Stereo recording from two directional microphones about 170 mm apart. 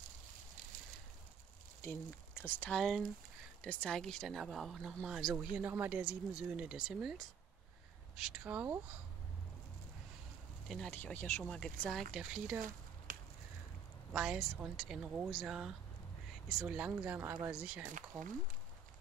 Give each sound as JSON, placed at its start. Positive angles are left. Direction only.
{"t": 1.8, "sound": "speech", "side_deg": 10}
{"t": 2.8, "sound": "speech", "side_deg": 0}
{"t": 8.2, "sound": "speech", "side_deg": -5}
{"t": 10.7, "sound": "speech", "side_deg": 5}
{"t": 12.6, "sound": "a sound", "side_deg": -55}
{"t": 14.1, "sound": "speech", "side_deg": -5}